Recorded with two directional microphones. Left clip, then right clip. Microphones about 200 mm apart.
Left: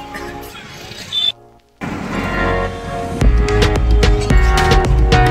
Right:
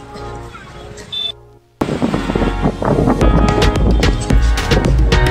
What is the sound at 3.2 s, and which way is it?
Music, centre (ahead or behind).